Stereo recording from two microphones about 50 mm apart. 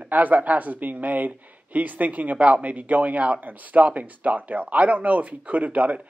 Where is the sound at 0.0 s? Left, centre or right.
Right.